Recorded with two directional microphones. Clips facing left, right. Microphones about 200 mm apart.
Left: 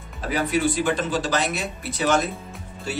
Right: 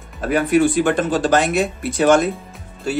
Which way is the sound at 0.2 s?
55° right (ahead or behind).